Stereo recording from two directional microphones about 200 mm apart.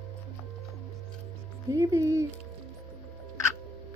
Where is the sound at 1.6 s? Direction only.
15° right (ahead or behind).